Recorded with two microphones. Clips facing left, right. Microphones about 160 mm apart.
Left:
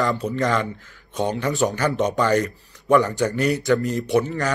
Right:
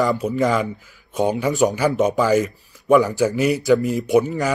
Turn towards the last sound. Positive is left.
turn(degrees=-15)  # may be behind; listen again after turning